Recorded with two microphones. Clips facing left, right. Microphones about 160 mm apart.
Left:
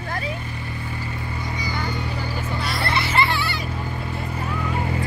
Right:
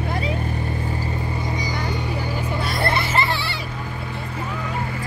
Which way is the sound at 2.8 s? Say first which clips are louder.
Even; 45° right (ahead or behind).